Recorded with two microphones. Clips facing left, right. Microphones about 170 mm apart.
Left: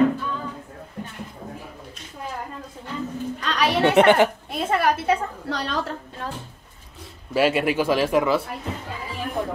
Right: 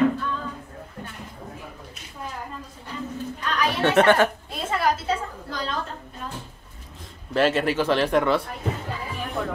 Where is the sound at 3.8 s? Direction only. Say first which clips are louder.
Left 2 dB; 15° left (ahead or behind).